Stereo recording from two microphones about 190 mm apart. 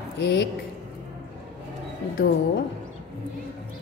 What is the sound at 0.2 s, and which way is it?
Speech, 65° left (ahead or behind).